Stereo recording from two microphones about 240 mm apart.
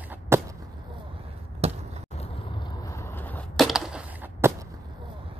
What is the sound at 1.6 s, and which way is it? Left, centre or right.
Basketball bounce, right.